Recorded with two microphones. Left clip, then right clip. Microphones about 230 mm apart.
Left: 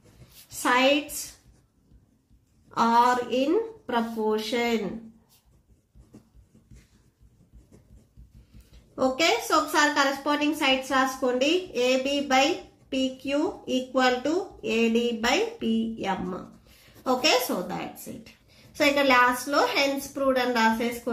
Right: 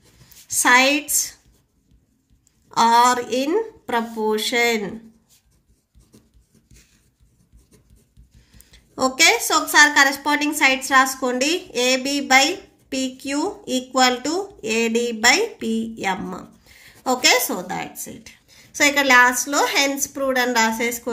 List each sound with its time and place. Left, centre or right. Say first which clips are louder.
0.6 s a woman's voice: right 7 dB; right
2.7 s a woman's voice: right 6 dB; right
8.9 s a woman's voice: right 7 dB; right